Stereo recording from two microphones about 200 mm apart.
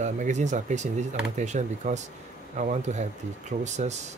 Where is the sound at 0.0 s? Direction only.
35° right (ahead or behind).